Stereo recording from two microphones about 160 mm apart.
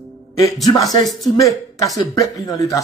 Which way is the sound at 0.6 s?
25° left (ahead or behind).